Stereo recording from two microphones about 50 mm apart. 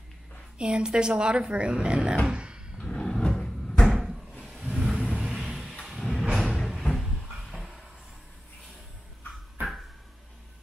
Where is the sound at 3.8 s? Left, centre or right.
Centre.